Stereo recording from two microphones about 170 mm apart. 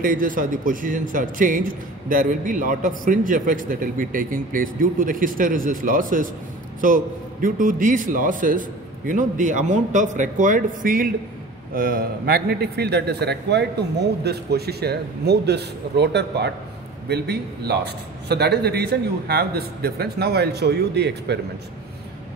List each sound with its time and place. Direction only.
0.0 s a man's voice: 55° right (ahead or behind); by 21.4 s 80° right